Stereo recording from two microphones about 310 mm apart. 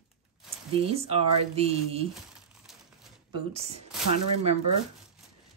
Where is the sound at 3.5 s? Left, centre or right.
Centre.